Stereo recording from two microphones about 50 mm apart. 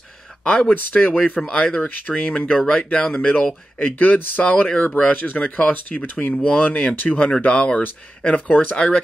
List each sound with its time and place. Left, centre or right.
0.6 s speech: left
1.8 s speech: left
6.6 s speech: left